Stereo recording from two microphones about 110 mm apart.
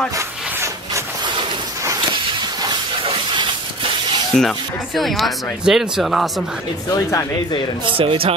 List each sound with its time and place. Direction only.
3.1 s a sound: 50° right (ahead or behind)
4.4 s speech: centre (ahead or behind)
6.9 s speech: 30° left (ahead or behind)
7.8 s speech: 55° right (ahead or behind)